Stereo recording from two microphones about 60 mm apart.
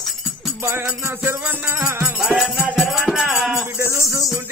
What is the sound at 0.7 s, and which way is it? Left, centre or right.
Music, right.